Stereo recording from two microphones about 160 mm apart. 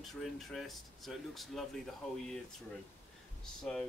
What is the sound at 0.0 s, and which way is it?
Speech, centre (ahead or behind).